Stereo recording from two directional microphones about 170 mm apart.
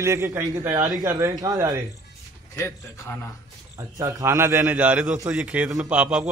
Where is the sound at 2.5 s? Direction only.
15° left (ahead or behind).